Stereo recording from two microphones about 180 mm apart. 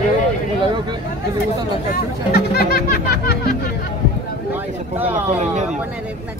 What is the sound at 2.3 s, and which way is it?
Music, 60° left (ahead or behind).